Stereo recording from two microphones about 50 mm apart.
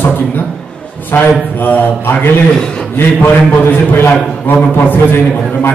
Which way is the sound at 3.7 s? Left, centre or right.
Left.